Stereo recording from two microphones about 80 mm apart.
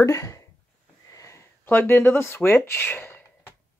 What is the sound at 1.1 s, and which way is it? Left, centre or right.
Sniff, left.